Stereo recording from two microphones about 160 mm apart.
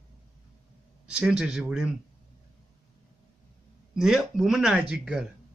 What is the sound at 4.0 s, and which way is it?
Speech, 5° right (ahead or behind).